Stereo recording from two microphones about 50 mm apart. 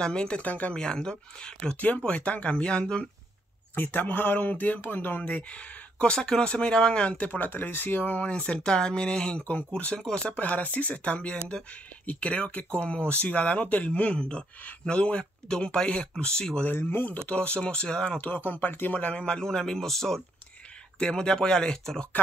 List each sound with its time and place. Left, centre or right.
0.0 s speech: centre
0.5 s speech: left
0.7 s speech: centre
2.0 s speech: left
3.7 s speech: left
6.1 s speech: centre
7.3 s speech: left
8.2 s speech: left
9.4 s speech: left; by 16.6 s centre
16.7 s speech: left
17.3 s speech: left
18.1 s speech: left; by 22.0 s centre